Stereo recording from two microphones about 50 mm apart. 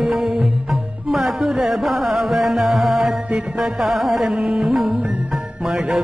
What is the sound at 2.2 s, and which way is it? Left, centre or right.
Music, centre.